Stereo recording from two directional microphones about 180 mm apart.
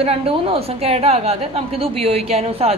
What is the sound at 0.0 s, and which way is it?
A woman's voice, 30° right (ahead or behind).